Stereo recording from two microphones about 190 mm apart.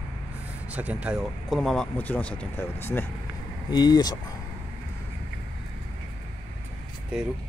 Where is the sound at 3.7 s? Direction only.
20° left (ahead or behind).